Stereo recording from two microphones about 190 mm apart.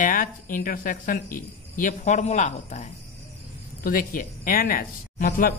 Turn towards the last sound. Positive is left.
turn(degrees=50)  # may be behind; listen again after turning